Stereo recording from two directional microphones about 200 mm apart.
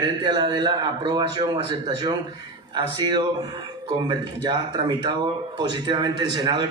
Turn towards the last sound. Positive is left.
turn(degrees=-20)  # may be behind; listen again after turning